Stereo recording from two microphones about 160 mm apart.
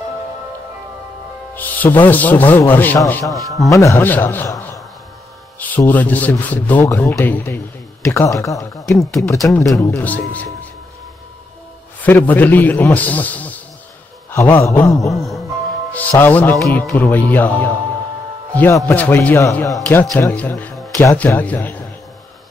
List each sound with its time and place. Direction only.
1.5 s a man's voice: 10° left (ahead or behind)
3.3 s speech: centre (ahead or behind)
3.7 s a man's voice: 15° left (ahead or behind)
8.1 s a sound: 20° left (ahead or behind)
8.8 s speech: centre (ahead or behind)
9.5 s a man's voice: 20° left (ahead or behind)
12.0 s a man's voice: 10° left (ahead or behind)
14.3 s a sound: 15° left (ahead or behind)
15.1 s a man's voice: centre (ahead or behind)
18.9 s a man's voice: 15° left (ahead or behind)